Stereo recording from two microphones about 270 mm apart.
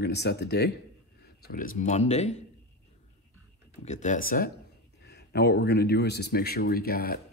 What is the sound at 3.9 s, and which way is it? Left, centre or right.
Speech, left.